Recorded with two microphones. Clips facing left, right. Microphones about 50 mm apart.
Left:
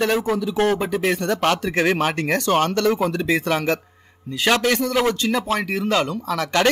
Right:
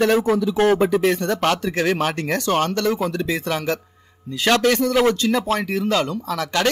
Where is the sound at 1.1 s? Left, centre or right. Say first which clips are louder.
Even; left.